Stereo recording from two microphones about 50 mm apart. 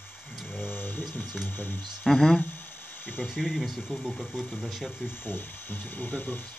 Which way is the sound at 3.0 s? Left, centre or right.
Left.